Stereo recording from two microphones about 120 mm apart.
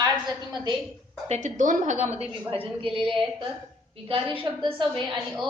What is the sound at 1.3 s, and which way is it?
A woman's voice, 85° right.